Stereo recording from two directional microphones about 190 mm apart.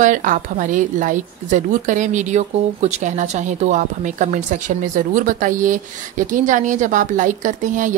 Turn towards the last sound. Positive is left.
turn(degrees=-40)  # may be behind; listen again after turning